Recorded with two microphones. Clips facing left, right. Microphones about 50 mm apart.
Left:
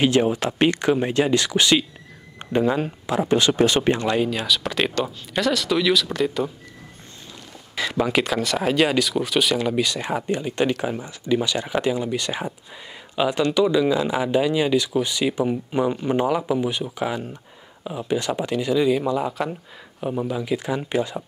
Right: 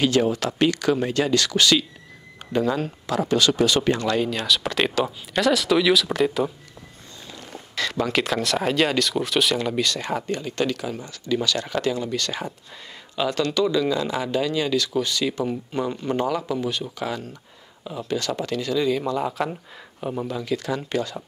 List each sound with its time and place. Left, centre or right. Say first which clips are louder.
0.0 s speech: left 1 dB; left
4.1 s speech: left 1 dB; centre
7.7 s speech: left 2 dB; centre
19.2 s speech: even; centre